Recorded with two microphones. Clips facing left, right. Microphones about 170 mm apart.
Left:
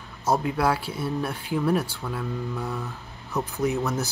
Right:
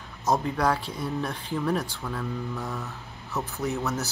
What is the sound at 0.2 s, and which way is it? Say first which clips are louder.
Speech: left 1 dB; 5° left (ahead or behind).